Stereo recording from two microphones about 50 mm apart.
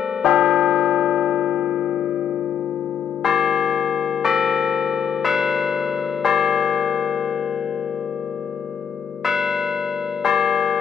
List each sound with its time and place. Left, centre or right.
0.2 s church bell: centre
3.3 s church bell: centre
9.2 s church bell: centre